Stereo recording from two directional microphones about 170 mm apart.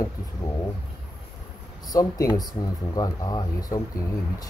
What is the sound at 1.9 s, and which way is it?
Speech, 20° left (ahead or behind).